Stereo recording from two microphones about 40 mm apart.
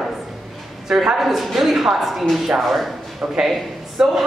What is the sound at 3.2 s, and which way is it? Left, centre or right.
Speech, right.